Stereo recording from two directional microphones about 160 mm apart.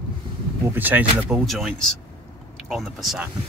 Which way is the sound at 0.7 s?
10° right (ahead or behind).